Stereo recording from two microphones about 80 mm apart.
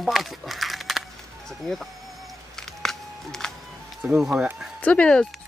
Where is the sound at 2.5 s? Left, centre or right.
Centre.